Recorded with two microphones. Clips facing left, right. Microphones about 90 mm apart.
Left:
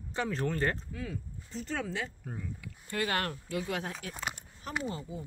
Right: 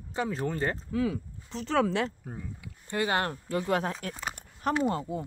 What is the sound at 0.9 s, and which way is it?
Speech, 80° right.